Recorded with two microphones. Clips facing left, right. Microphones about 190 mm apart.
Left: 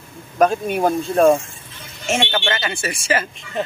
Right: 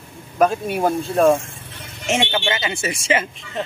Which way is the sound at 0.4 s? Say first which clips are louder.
Left 1 dB; centre (ahead or behind).